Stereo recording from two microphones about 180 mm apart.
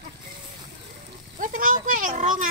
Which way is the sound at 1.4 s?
45° right (ahead or behind).